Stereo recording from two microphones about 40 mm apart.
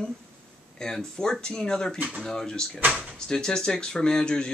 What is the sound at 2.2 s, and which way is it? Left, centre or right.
Speech, centre.